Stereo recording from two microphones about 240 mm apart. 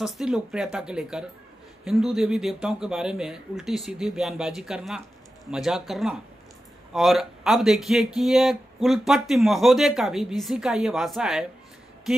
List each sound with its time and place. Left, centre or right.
0.0 s speech: centre